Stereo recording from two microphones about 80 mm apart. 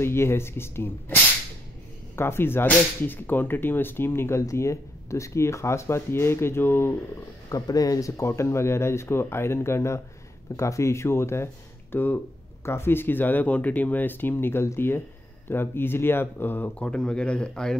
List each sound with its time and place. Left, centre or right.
0.0 s speech: left
7.4 s speech: left
16.8 s speech: centre